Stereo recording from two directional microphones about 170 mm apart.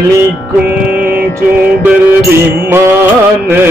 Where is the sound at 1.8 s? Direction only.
15° right (ahead or behind).